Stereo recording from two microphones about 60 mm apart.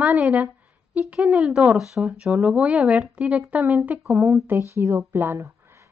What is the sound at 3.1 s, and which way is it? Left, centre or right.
Speech, right.